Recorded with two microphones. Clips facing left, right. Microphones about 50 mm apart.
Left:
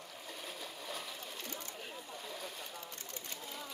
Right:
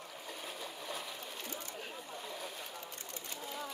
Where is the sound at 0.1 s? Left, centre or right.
Centre.